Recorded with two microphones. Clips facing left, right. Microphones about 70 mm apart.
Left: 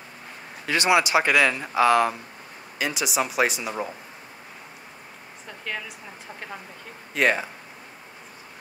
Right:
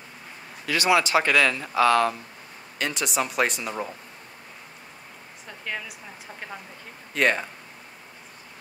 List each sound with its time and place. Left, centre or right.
0.7 s speech: left; by 3.9 s centre
5.7 s speech: centre
7.2 s speech: centre